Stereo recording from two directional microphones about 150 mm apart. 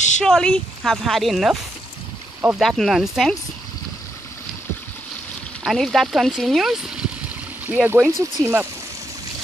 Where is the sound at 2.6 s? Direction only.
Centre (ahead or behind).